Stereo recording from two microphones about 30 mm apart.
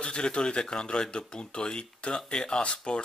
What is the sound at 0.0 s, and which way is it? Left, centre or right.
Speech, left.